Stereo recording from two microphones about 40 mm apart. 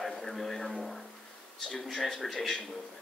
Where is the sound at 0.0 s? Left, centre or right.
Centre.